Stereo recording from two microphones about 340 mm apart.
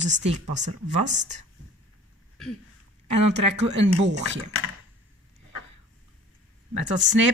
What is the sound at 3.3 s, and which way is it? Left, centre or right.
Speech, centre.